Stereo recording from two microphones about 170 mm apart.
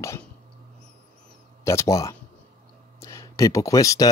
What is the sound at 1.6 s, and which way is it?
Speech, 15° left (ahead or behind).